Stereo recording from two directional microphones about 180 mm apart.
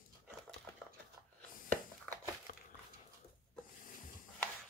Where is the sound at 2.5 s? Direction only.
50° left (ahead or behind).